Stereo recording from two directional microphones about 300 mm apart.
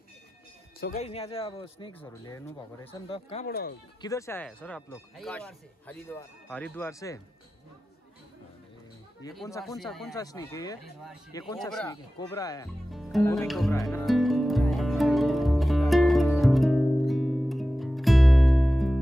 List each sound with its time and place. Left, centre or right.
0.7 s speech: left
3.4 s speech: left
4.0 s speech: centre
9.7 s speech: centre
10.1 s speech: centre
12.9 s music: centre